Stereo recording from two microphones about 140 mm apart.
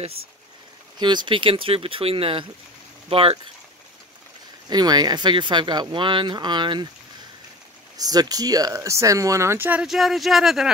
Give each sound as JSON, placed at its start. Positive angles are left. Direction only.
{"t": 0.9, "sound": "speech", "side_deg": -35}
{"t": 4.6, "sound": "speech", "side_deg": -30}
{"t": 8.0, "sound": "speech", "side_deg": -25}